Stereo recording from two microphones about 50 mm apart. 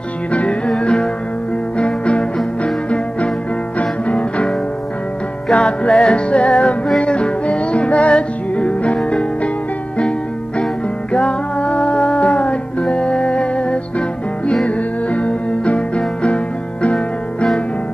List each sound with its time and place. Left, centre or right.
0.3 s music: left
5.5 s music: centre
10.6 s music: centre